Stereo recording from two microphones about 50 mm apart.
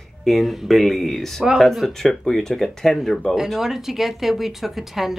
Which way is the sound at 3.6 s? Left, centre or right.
Centre.